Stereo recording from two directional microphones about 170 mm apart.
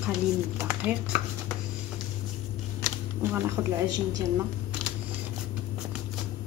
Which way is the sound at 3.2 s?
15° right (ahead or behind).